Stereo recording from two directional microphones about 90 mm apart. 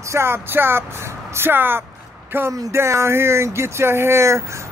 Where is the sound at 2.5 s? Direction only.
35° right (ahead or behind).